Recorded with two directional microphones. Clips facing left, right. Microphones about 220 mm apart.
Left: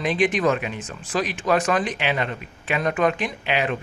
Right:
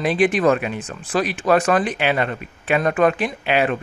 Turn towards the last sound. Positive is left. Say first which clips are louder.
# right 5 dB
turn(degrees=-45)  # may be behind; listen again after turning